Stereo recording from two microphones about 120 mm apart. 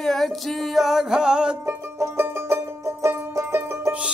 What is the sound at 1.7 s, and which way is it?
Banjo, 20° right (ahead or behind).